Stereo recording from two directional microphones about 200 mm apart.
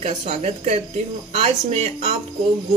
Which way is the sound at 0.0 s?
30° right (ahead or behind).